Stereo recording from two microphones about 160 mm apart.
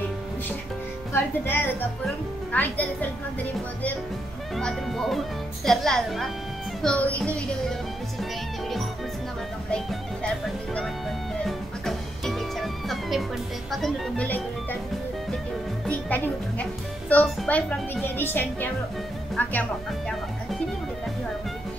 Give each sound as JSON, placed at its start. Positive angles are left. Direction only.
{"t": 1.1, "sound": "a woman's voice", "side_deg": 15}
{"t": 4.6, "sound": "a woman's voice", "side_deg": 5}
{"t": 10.7, "sound": "music", "side_deg": 5}
{"t": 13.7, "sound": "speech", "side_deg": 0}
{"t": 15.9, "sound": "a woman's voice", "side_deg": 10}